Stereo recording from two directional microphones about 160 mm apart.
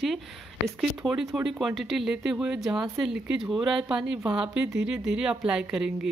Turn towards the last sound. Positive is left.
turn(degrees=-5)  # may be behind; listen again after turning